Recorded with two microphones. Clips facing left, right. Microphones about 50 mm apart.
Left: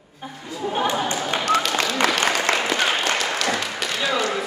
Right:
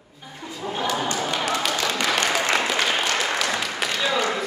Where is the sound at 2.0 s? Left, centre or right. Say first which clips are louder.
Left 2 dB; left.